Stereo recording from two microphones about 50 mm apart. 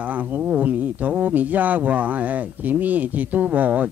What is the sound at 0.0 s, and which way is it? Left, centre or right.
Speech, right.